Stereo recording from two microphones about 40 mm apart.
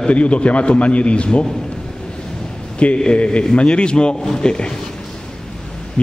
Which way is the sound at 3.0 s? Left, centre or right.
Left.